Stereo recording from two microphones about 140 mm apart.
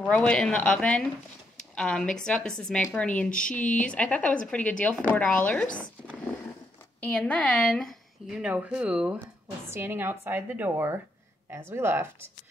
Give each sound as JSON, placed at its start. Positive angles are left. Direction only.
{"t": 0.1, "sound": "speech", "side_deg": 5}
{"t": 3.3, "sound": "speech", "side_deg": 70}
{"t": 3.8, "sound": "a woman's voice", "side_deg": 10}